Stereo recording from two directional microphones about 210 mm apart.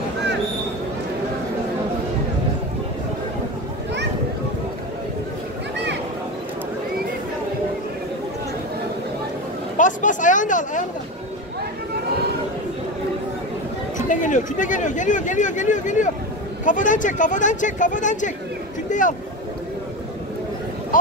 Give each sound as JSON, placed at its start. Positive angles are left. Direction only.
{"t": 9.8, "sound": "speech", "side_deg": 35}
{"t": 13.9, "sound": "speech", "side_deg": 35}
{"t": 20.9, "sound": "a sound", "side_deg": 40}